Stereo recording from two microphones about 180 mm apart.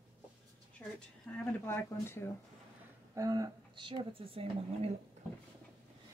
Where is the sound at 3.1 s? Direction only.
20° right (ahead or behind).